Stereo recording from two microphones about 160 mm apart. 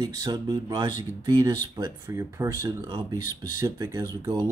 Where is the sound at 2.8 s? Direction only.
30° right (ahead or behind).